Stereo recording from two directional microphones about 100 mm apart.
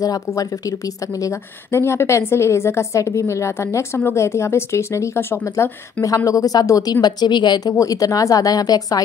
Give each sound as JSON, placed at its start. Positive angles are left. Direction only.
{"t": 0.0, "sound": "a woman's voice", "side_deg": 35}
{"t": 7.7, "sound": "speech", "side_deg": 35}